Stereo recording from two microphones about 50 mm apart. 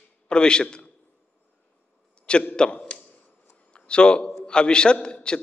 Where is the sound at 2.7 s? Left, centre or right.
Left.